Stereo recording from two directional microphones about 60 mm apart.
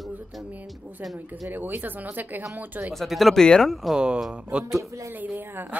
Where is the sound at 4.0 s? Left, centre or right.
Centre.